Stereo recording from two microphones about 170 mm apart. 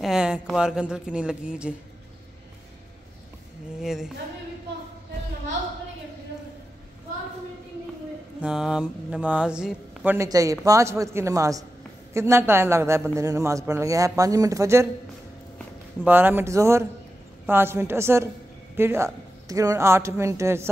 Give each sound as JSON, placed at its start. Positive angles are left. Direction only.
{"t": 0.0, "sound": "speech", "side_deg": -5}
{"t": 3.8, "sound": "speech", "side_deg": 0}
{"t": 8.4, "sound": "speech", "side_deg": -5}
{"t": 10.1, "sound": "a woman's voice", "side_deg": -20}
{"t": 16.0, "sound": "a man's voice", "side_deg": -10}